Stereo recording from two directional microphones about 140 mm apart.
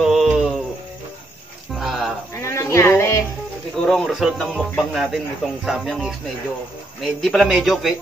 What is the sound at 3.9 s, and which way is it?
A man's voice, centre (ahead or behind).